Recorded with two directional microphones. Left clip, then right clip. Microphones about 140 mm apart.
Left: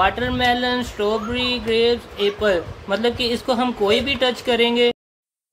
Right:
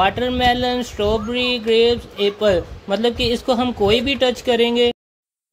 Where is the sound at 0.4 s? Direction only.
40° right (ahead or behind).